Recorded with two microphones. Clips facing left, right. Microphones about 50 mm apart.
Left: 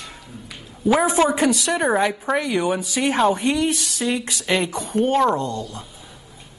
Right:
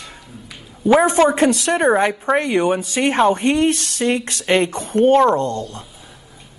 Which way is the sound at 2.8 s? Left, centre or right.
Right.